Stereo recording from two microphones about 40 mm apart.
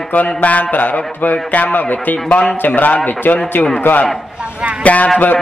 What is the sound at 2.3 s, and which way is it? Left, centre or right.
Speech, left.